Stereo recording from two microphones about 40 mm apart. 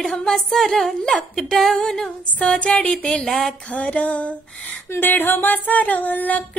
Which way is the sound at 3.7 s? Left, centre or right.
Left.